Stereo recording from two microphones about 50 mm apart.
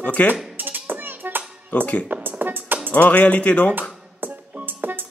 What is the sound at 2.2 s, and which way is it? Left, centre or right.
Music, right.